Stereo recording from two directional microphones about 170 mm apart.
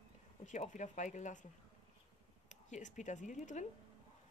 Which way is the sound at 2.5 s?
45° left (ahead or behind).